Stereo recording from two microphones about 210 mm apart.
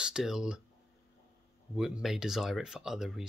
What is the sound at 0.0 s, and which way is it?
Speech, 5° right (ahead or behind).